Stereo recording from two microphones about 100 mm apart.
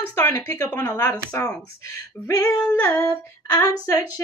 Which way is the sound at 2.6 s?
20° left (ahead or behind).